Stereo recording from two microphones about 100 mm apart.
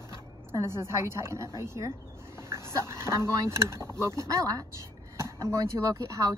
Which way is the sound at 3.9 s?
25° right (ahead or behind).